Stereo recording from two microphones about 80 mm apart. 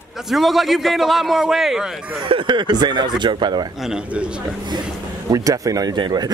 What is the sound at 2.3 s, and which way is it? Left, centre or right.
Speech, right.